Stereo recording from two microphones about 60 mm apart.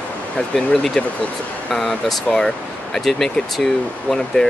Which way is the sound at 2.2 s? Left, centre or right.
Centre.